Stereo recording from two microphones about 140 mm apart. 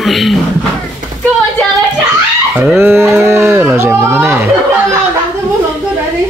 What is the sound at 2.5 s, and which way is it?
Speech, 10° right (ahead or behind).